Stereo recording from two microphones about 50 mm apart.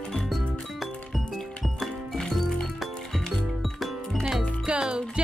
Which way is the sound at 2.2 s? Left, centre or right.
Centre.